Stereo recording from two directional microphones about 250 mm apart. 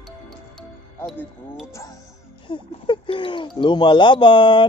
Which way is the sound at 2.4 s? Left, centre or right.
Centre.